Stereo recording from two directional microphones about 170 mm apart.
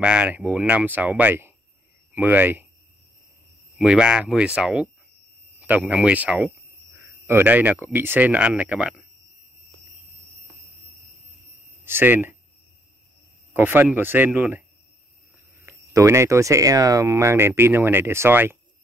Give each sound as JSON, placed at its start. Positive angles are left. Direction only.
{"t": 0.0, "sound": "speech", "side_deg": -5}
{"t": 3.7, "sound": "speech", "side_deg": -5}
{"t": 11.8, "sound": "speech", "side_deg": -15}
{"t": 13.5, "sound": "speech", "side_deg": -10}
{"t": 15.6, "sound": "speech", "side_deg": -15}